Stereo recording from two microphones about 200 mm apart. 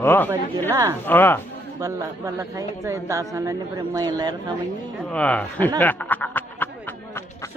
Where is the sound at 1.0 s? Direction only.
10° left (ahead or behind).